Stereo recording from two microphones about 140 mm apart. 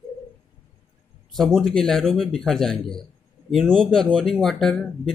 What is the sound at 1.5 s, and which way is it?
Speech, centre (ahead or behind).